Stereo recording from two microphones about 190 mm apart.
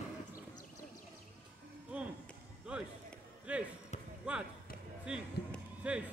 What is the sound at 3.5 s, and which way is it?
Basketball bounce, 5° right (ahead or behind).